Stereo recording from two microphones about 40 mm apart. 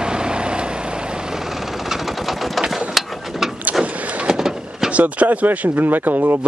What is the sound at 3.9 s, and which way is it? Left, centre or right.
Vehicle, right.